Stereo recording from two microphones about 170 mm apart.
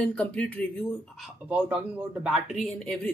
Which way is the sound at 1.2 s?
10° right (ahead or behind).